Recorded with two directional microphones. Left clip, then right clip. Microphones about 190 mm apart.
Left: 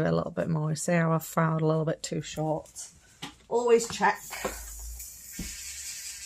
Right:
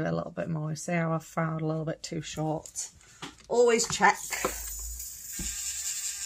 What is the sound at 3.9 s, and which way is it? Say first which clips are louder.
Speech: right 3 dB; 30° right (ahead or behind).